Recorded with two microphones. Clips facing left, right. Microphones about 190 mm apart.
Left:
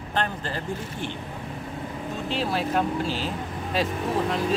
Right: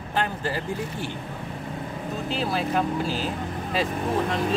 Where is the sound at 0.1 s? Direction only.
10° right (ahead or behind).